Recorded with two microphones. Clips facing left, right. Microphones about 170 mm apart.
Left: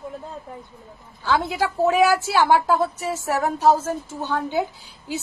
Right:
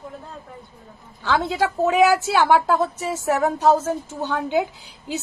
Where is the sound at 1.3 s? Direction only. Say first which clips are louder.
Right 1 dB; 20° right (ahead or behind).